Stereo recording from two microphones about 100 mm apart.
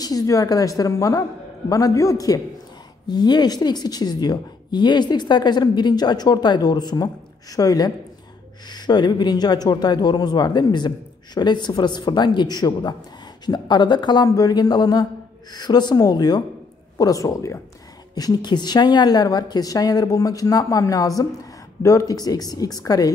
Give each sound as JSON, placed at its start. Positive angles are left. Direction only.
{"t": 0.0, "sound": "a woman's voice", "side_deg": 35}